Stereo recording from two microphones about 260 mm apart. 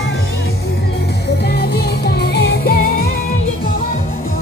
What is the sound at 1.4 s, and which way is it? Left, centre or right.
Music, left.